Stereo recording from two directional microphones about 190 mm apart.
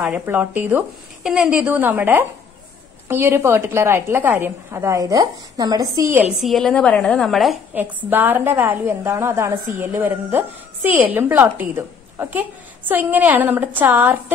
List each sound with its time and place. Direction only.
0.0 s a woman's voice: 10° right (ahead or behind)